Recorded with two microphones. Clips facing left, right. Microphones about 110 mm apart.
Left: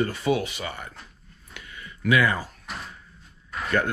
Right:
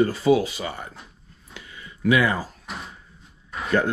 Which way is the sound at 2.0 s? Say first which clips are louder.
Right 2 dB; 25° right (ahead or behind).